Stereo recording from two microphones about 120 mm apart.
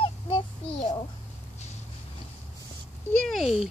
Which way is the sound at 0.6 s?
50° left (ahead or behind).